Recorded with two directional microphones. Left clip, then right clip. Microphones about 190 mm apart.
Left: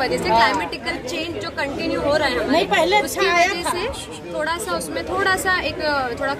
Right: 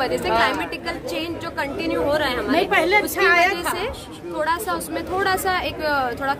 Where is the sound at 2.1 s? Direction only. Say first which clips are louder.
Left 2 dB; 20° right (ahead or behind).